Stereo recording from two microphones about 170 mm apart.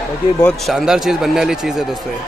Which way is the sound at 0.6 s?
Centre (ahead or behind).